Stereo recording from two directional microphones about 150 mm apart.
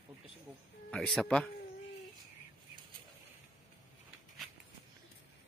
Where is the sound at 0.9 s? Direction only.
5° left (ahead or behind).